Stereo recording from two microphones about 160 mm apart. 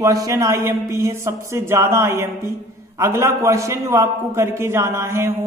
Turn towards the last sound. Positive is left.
turn(degrees=-15)  # may be behind; listen again after turning